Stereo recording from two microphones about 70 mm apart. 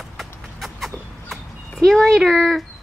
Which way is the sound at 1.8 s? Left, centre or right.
Centre.